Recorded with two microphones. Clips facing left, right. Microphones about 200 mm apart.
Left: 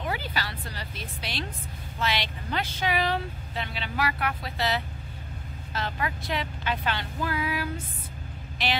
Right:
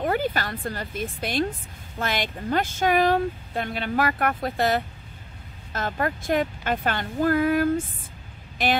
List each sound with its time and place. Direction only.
0.0 s speech: 50° right (ahead or behind)